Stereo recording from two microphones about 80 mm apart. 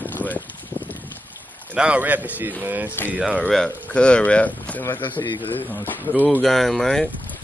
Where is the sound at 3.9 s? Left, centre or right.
Centre.